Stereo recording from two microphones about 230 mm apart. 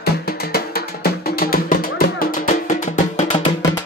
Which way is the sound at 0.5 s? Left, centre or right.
Left.